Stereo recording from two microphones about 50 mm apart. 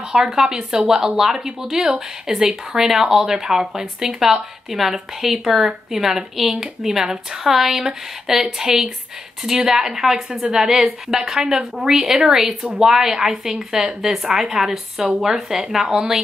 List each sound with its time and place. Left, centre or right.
0.1 s speech: centre